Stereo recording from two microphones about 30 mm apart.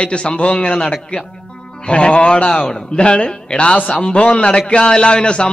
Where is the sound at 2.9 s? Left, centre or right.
Left.